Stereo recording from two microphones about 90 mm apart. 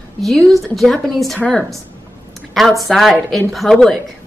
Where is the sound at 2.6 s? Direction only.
Centre (ahead or behind).